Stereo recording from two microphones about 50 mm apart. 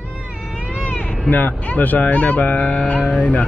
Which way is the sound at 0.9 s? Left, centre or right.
Left.